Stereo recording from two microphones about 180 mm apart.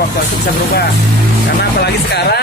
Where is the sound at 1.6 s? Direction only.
60° left (ahead or behind).